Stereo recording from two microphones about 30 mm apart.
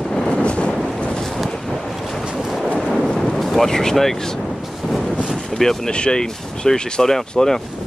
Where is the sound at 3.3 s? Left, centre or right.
Centre.